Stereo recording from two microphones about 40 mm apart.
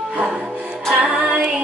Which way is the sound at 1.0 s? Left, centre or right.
Centre.